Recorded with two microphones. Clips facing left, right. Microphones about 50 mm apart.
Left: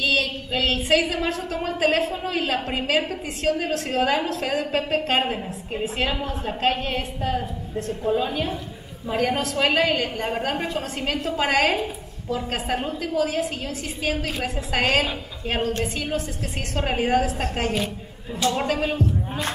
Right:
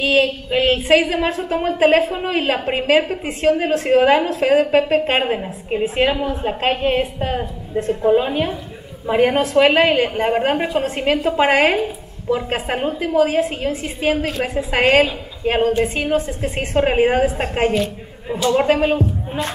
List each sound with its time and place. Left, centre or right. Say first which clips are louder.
0.0 s a sound: right 6 dB; right
1.1 s a woman's voice: right 6 dB; right
18.4 s a woman's voice: right 7 dB; centre